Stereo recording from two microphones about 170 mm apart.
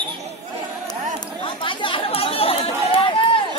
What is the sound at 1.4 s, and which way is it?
Chatter, 30° left (ahead or behind).